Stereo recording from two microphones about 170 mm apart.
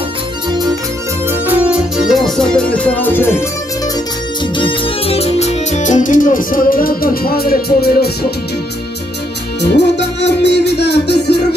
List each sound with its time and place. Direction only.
0.5 s music: 25° right (ahead or behind)
1.3 s music: 10° right (ahead or behind); by 3.4 s 10° left (ahead or behind)
4.6 s music: 30° left (ahead or behind); by 8.3 s 65° left (ahead or behind)
9.6 s music: 90° left